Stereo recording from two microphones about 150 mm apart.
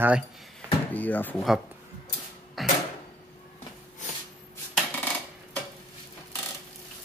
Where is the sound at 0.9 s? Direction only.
10° left (ahead or behind).